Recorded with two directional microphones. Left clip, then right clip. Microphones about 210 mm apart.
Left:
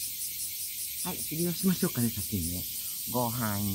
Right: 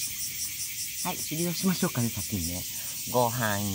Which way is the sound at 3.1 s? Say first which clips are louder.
Right 6 dB; 35° right (ahead or behind).